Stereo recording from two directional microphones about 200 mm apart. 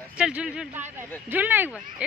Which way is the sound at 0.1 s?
5° right (ahead or behind).